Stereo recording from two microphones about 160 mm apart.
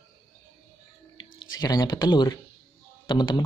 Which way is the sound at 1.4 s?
25° left (ahead or behind).